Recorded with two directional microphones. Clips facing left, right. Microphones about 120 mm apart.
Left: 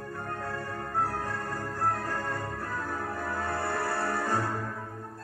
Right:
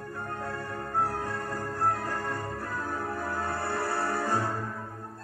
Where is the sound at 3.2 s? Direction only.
40° right (ahead or behind).